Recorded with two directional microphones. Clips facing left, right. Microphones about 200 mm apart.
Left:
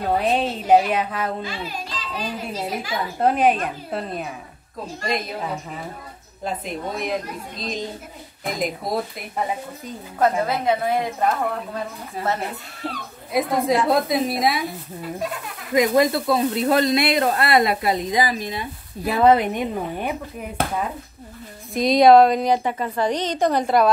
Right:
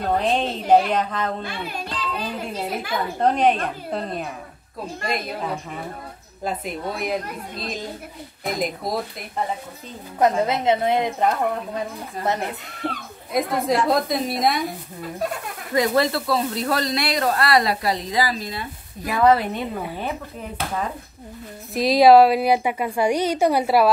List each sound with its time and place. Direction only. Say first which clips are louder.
0.0 s a woman's voice: left 1 dB; 5° left (ahead or behind)
1.4 s speech: even; 60° right (ahead or behind)
3.2 s a woman's voice: left 1 dB; 5° left (ahead or behind)
10.1 s a woman's voice: right 1 dB; 20° right (ahead or behind)
12.8 s a woman's voice: right 2 dB; 15° right (ahead or behind)
13.3 s a woman's voice: left 1 dB; centre (ahead or behind)
15.7 s a woman's voice: left 2 dB; 15° left (ahead or behind)
21.7 s a woman's voice: even; 5° right (ahead or behind)